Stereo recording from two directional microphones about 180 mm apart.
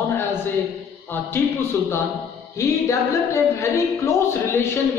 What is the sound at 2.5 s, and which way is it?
Music, 15° left (ahead or behind).